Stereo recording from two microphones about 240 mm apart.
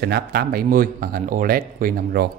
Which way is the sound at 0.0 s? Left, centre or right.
Right.